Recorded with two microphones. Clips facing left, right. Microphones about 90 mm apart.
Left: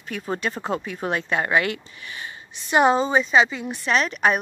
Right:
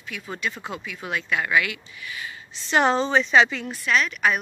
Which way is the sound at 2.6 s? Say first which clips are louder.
Left 2 dB; 10° left (ahead or behind).